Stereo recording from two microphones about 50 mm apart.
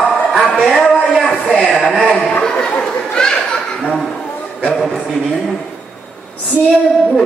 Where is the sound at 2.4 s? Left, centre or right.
Centre.